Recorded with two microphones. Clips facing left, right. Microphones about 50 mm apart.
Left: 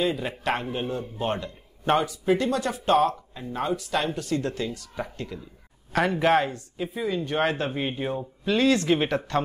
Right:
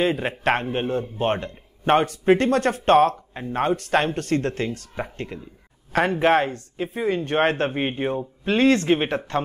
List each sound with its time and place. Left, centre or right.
0.0 s a man's voice: right